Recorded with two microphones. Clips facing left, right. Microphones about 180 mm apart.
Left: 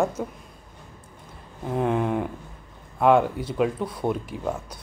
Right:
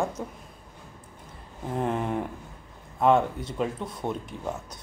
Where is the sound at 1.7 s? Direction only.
Centre (ahead or behind).